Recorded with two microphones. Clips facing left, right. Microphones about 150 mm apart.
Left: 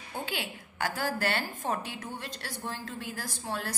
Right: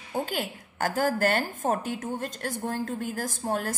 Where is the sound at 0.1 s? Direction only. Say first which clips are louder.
Right 6 dB; 45° right (ahead or behind).